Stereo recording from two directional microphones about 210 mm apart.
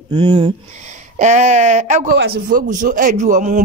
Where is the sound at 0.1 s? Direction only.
25° right (ahead or behind).